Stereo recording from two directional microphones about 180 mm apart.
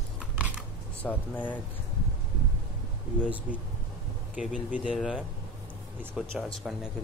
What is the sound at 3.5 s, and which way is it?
Speech, 50° left (ahead or behind).